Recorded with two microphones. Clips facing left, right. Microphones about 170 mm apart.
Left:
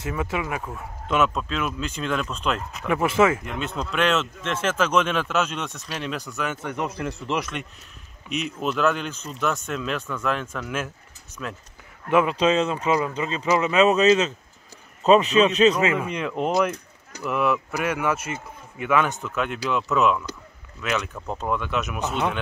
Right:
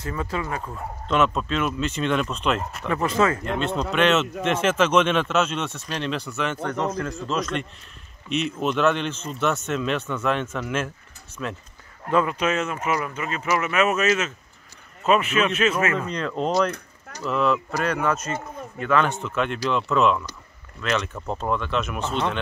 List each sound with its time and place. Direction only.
0.0 s speech: 5° left (ahead or behind)
5.7 s speech: 10° left (ahead or behind)
12.1 s speech: 10° left (ahead or behind)
12.4 s speech: 30° left (ahead or behind)
15.4 s speech: 20° left (ahead or behind)
15.8 s speech: 10° left (ahead or behind)